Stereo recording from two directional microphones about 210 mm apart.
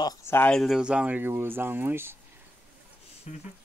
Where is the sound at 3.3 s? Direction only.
35° left (ahead or behind).